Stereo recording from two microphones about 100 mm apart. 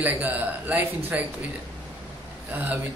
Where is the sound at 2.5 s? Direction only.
15° right (ahead or behind).